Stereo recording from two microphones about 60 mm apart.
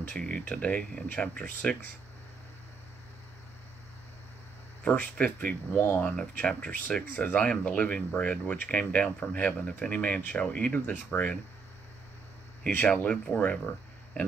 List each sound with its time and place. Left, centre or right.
0.1 s speech: centre
4.8 s speech: left
10.7 s speech: left
12.8 s speech: left